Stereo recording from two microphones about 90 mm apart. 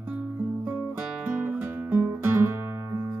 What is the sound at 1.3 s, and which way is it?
Music, 15° right (ahead or behind).